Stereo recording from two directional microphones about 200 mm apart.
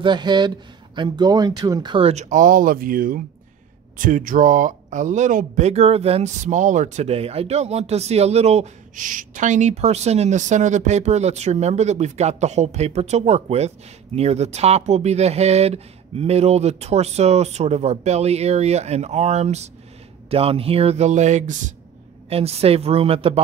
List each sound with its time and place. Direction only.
0.0 s a woman's voice: 20° right (ahead or behind)